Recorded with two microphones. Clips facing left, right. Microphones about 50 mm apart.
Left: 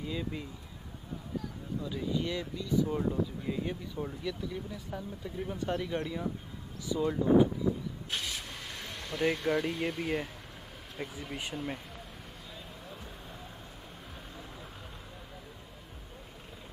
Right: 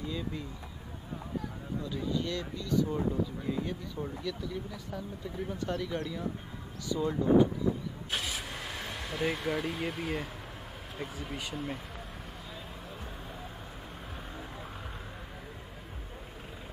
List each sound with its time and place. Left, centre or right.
0.0 s speech: centre
1.8 s speech: centre
8.1 s vehicle: centre
11.0 s speech: centre